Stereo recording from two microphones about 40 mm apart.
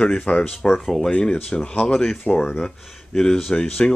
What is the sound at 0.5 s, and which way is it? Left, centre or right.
Speech, centre.